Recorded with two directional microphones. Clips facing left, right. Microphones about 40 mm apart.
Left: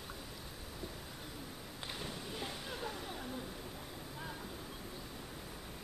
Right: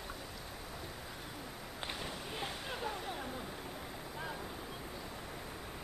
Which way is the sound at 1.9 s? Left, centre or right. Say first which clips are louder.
Even; centre.